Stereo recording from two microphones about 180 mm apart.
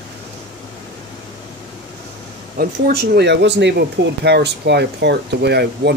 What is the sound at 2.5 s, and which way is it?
Speech, 55° right (ahead or behind).